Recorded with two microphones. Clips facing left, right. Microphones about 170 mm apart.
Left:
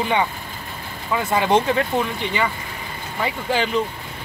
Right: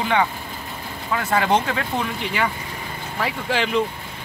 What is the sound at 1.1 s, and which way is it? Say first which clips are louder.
Speech: left 2 dB; 5° left (ahead or behind).